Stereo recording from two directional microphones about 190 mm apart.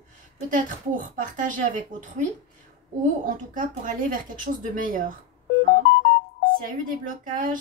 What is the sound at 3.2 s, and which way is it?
A woman's voice, 45° right (ahead or behind).